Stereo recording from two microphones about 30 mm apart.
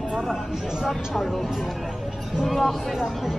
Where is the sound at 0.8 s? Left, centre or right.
Centre.